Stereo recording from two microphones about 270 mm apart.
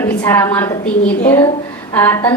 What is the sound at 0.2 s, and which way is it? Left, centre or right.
A woman's voice, centre.